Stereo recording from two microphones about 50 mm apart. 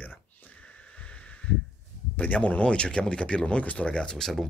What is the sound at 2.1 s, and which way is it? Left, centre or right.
Speech, left.